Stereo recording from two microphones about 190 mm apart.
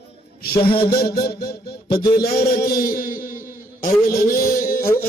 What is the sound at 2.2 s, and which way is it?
A man's voice, 50° left (ahead or behind).